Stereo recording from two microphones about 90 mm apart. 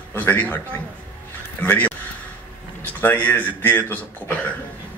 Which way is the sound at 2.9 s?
20° left (ahead or behind).